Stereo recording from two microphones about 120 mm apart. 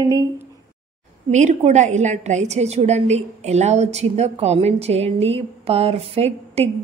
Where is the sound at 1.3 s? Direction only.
80° right.